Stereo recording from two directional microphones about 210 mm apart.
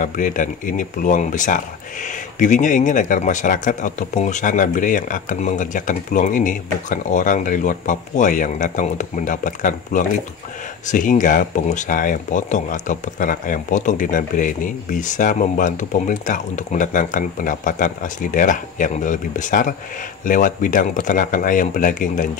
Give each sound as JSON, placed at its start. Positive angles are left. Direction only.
{"t": 0.0, "sound": "speech", "side_deg": 40}